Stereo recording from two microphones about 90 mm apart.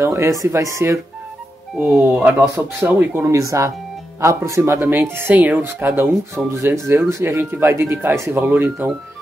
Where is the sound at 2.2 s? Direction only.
25° right (ahead or behind).